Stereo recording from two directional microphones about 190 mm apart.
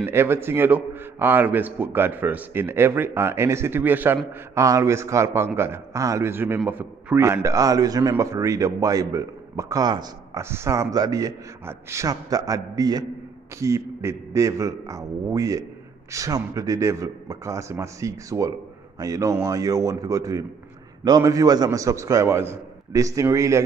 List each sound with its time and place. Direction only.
0.0 s a man's voice: 10° right (ahead or behind)